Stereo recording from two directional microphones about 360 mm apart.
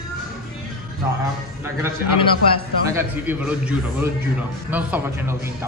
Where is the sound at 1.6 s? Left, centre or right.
Centre.